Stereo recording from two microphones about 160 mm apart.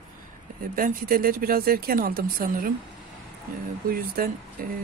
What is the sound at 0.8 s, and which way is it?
Speech, 65° right (ahead or behind).